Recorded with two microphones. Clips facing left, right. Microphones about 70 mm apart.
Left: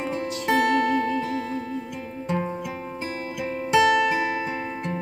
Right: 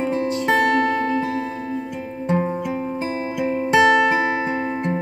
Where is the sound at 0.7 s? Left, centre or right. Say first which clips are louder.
Right 3 dB; right.